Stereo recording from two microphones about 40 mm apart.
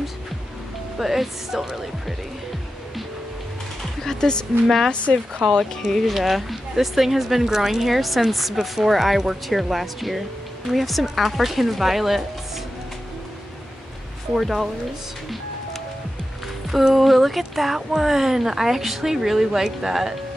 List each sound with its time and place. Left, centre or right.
0.9 s speech: centre
4.0 s speech: centre
5.9 s speech: centre
6.1 s speech: centre
14.3 s speech: centre
16.7 s speech: centre